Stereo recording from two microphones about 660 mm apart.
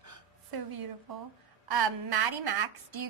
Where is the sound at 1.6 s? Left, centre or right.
Right.